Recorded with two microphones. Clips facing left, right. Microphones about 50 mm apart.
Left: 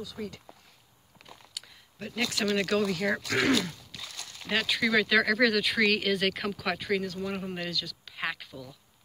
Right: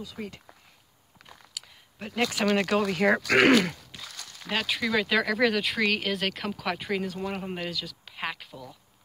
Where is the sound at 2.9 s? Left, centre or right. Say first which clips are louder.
Right 6 dB; right.